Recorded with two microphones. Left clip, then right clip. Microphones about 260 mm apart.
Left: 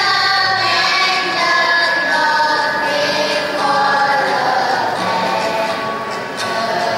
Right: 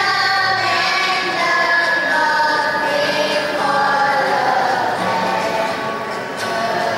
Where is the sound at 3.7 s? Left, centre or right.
Centre.